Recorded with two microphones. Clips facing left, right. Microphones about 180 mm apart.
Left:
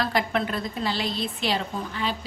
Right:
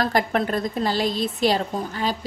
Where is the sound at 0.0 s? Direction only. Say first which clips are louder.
Right 3 dB; 45° right (ahead or behind).